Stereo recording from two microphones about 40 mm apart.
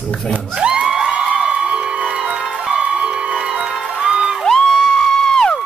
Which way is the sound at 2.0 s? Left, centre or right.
Centre.